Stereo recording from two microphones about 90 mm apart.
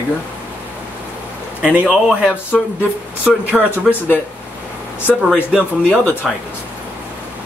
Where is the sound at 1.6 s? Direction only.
15° right (ahead or behind).